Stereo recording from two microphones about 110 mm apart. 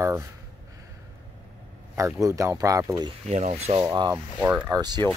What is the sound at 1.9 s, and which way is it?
Speech, 30° right (ahead or behind).